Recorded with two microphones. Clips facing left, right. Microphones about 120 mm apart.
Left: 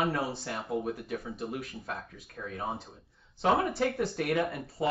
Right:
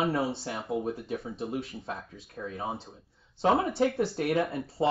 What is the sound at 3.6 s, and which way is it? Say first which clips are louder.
Speech: right 2 dB; 25° right (ahead or behind).